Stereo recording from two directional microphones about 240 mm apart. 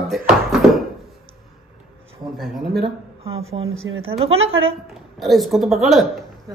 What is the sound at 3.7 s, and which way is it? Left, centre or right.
Speech, right.